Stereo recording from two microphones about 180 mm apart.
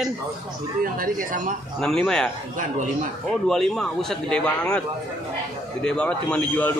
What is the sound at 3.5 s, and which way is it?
A man's voice, centre (ahead or behind).